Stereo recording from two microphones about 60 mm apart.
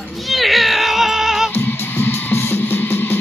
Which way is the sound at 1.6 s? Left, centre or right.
Left.